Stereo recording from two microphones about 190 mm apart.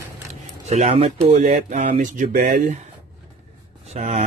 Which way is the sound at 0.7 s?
35° right (ahead or behind).